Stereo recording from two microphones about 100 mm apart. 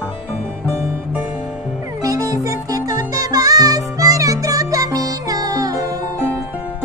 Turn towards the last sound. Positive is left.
turn(degrees=-35)  # may be behind; listen again after turning